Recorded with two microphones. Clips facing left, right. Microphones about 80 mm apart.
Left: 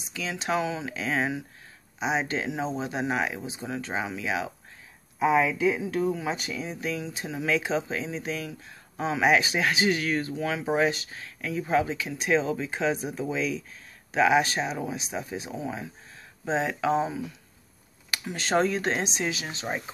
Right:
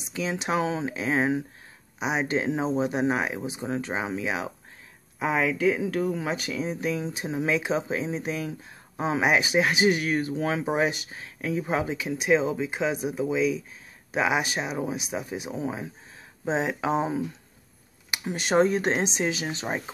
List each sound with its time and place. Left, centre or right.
0.0 s speech: right
2.0 s speech: centre
5.9 s speech: right
6.7 s speech: right
10.3 s speech: right
10.7 s speech: centre
15.6 s speech: right
18.3 s speech: centre